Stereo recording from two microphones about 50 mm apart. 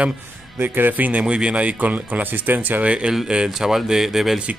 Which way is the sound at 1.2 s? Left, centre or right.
Right.